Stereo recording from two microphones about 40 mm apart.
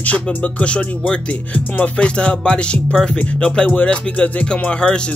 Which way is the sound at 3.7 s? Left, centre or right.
Left.